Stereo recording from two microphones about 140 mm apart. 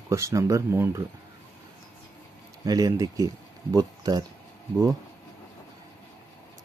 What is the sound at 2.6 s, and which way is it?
Speech, 25° right (ahead or behind).